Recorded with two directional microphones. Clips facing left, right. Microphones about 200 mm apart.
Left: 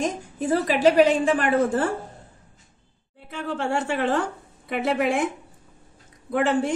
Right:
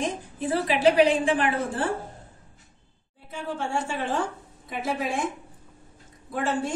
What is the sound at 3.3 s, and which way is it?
A woman's voice, 65° left (ahead or behind).